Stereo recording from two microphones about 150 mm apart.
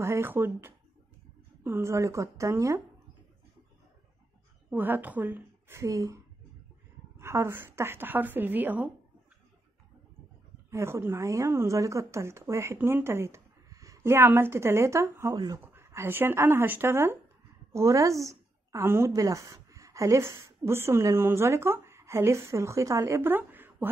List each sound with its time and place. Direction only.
0.0 s a woman's voice: 15° right (ahead or behind)
4.6 s a woman's voice: 10° right (ahead or behind)
10.7 s a woman's voice: 20° right (ahead or behind)